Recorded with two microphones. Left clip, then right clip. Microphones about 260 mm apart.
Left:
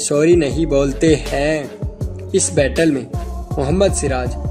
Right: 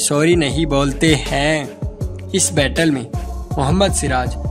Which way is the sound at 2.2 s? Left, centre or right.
Right.